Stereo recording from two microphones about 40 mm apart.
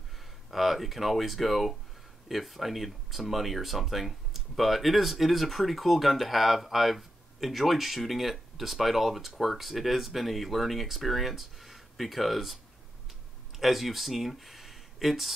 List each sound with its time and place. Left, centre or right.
0.5 s speech: centre
13.6 s speech: centre